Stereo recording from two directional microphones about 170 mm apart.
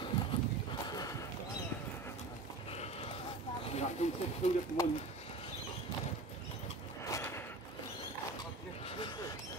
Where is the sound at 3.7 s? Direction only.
40° left (ahead or behind).